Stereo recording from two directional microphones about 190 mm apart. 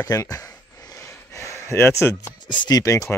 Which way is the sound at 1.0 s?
15° left (ahead or behind).